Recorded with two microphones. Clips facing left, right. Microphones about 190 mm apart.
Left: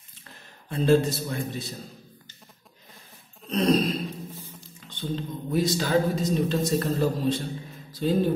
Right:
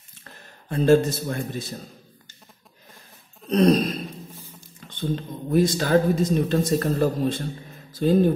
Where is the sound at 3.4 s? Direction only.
45° right (ahead or behind).